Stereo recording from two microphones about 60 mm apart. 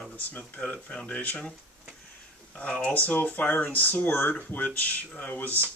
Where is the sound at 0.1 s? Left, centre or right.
Left.